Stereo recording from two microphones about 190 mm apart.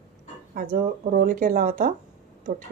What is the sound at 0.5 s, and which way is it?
Speech, 45° right (ahead or behind).